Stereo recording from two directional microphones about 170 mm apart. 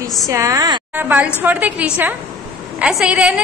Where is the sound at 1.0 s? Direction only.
10° right (ahead or behind).